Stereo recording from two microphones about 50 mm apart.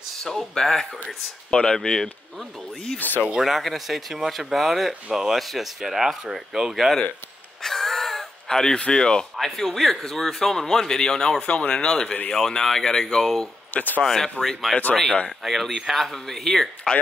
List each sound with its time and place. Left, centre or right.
0.2 s speech: centre
1.0 s speech: centre
3.0 s speech: left
3.3 s speech: centre
7.6 s a sound: centre
8.7 s speech: centre
11.4 s speech: left
13.7 s speech: left
14.0 s speech: centre